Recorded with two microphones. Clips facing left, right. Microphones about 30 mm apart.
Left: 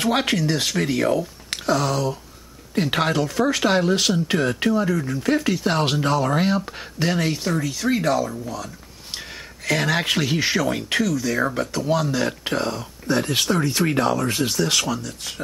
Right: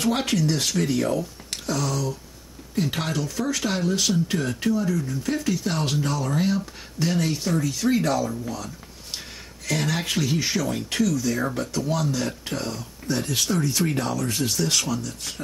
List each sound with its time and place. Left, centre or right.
0.0 s speech: left
8.5 s speech: centre
9.7 s speech: left
14.6 s speech: centre